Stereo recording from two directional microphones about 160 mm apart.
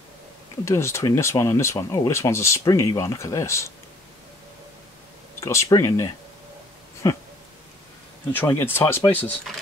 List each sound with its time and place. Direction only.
0.7 s speech: 15° left (ahead or behind)
5.4 s speech: 20° left (ahead or behind)
8.3 s speech: 15° left (ahead or behind)